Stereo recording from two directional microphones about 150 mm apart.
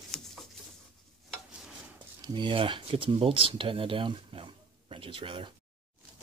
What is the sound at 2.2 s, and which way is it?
Speech, 30° right (ahead or behind).